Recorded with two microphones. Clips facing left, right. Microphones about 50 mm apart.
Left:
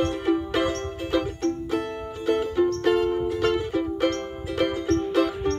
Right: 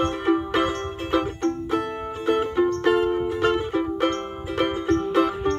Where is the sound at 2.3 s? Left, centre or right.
Right.